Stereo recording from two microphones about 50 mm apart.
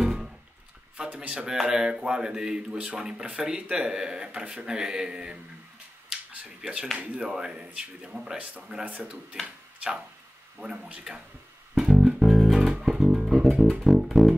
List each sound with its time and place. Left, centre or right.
0.0 s music: centre
0.9 s speech: right
7.2 s speech: centre
8.4 s speech: right
10.6 s speech: centre
11.8 s music: centre
12.8 s bass guitar: centre
13.8 s music: centre